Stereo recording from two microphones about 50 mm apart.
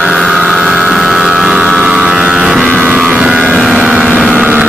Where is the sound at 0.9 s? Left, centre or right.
Centre.